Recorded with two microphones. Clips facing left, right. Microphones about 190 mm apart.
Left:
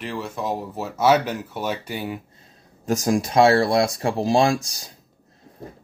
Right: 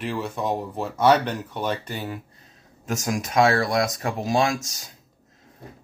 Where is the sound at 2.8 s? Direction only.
35° left (ahead or behind).